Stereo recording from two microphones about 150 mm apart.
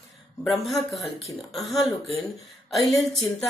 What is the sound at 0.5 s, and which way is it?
A woman's voice, centre (ahead or behind).